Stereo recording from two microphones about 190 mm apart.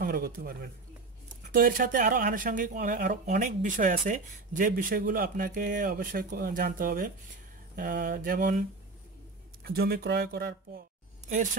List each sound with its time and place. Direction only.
0.0 s speech: 50° right (ahead or behind)